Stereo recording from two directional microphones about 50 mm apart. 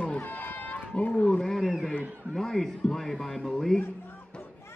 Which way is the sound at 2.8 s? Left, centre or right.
Centre.